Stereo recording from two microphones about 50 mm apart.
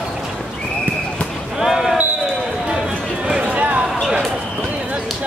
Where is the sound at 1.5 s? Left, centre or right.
Centre.